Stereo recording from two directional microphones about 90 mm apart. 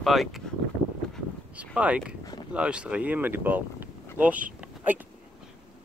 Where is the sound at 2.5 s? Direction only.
10° right (ahead or behind).